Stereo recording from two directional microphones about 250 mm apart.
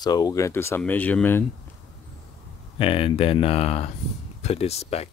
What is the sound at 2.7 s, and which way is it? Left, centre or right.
Speech, left.